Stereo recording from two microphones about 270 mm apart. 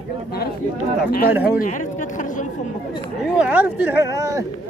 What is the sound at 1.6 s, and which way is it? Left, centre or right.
Speech, left.